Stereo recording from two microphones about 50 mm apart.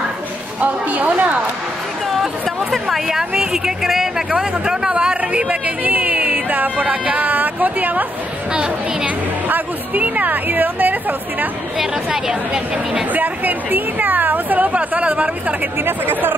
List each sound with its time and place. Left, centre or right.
0.6 s speech: right
2.4 s speech: centre; by 8.1 s right
9.5 s speech: right
11.8 s speech: centre
13.1 s speech: right
15.8 s speech: right